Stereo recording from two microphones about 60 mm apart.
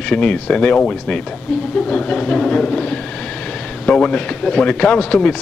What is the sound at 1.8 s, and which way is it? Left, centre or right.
Train, centre.